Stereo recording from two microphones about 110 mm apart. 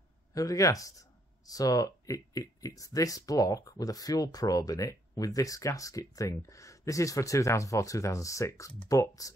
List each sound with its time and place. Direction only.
0.3 s speech: 30° left (ahead or behind)